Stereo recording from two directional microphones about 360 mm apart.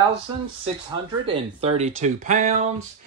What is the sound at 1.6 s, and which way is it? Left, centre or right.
Speech, centre.